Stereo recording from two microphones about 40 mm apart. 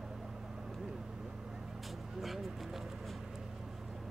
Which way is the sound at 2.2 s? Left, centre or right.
Centre.